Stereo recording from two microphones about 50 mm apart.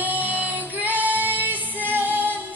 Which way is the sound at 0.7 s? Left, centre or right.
Right.